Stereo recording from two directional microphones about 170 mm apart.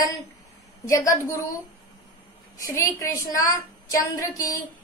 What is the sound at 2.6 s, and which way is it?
Speech, 20° left (ahead or behind).